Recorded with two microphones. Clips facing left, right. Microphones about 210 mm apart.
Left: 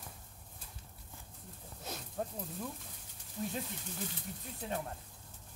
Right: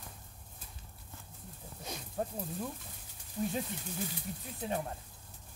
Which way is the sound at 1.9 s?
10° right (ahead or behind).